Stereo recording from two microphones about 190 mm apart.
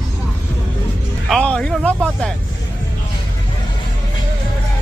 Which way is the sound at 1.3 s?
5° left (ahead or behind).